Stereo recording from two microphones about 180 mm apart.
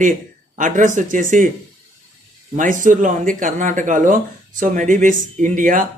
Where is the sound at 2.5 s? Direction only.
45° right (ahead or behind).